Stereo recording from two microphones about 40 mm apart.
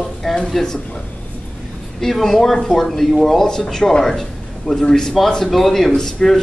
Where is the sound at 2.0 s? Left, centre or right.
Centre.